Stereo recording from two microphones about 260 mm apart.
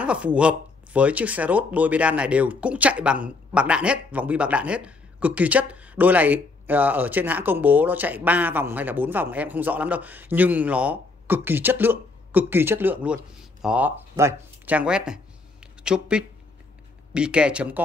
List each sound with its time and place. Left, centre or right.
0.0 s speech: centre
15.6 s a sound: centre
17.1 s speech: centre